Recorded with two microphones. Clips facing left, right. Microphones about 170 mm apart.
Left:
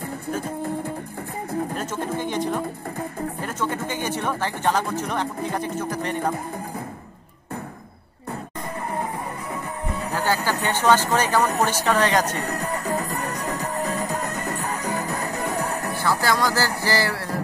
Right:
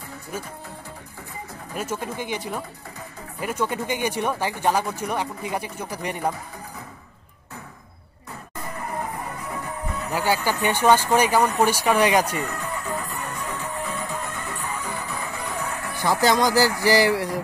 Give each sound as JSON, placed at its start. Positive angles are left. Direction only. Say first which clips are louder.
{"t": 1.8, "sound": "speech", "louder": "left 2 dB", "side_deg": -10}
{"t": 10.1, "sound": "speech", "louder": "right 1 dB", "side_deg": -10}
{"t": 12.4, "sound": "music", "louder": "left 2 dB", "side_deg": 40}
{"t": 16.0, "sound": "speech", "louder": "right 3 dB", "side_deg": -20}